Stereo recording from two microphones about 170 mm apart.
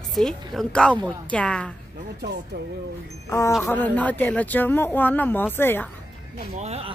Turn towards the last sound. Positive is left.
turn(degrees=-40)  # may be behind; listen again after turning